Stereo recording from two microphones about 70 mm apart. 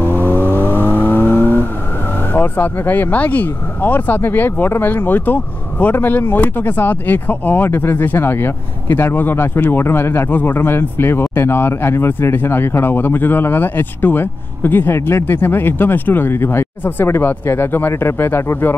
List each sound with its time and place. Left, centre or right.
0.5 s vehicle: right
1.1 s vehicle: left
2.3 s speech: left